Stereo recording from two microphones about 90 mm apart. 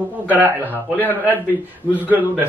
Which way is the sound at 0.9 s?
20° left (ahead or behind).